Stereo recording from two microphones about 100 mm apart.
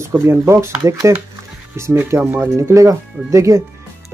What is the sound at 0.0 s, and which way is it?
Speech, 25° right (ahead or behind).